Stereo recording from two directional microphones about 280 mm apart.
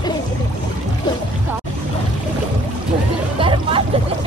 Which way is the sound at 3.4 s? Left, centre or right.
Centre.